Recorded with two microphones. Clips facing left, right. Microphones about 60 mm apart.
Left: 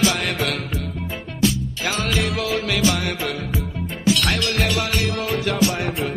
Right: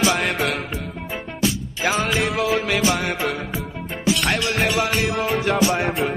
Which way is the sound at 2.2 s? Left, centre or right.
Centre.